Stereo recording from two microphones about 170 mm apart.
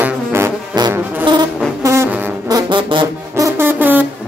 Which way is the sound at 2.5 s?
30° right (ahead or behind).